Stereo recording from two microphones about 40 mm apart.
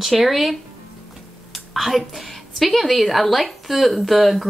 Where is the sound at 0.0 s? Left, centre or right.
Centre.